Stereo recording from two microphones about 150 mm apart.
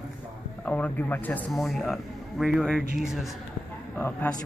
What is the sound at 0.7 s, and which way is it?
Speech, 10° left (ahead or behind).